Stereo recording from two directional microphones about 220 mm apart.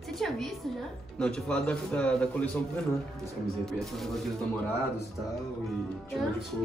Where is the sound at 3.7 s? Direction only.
Centre (ahead or behind).